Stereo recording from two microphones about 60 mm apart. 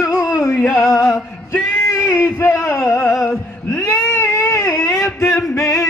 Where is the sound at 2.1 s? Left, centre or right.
Left.